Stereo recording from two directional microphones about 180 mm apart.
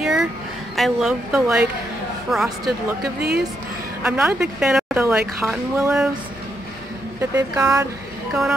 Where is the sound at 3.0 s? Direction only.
65° right (ahead or behind).